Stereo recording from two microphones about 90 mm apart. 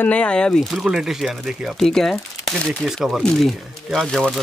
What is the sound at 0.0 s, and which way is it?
Speech, 15° left (ahead or behind).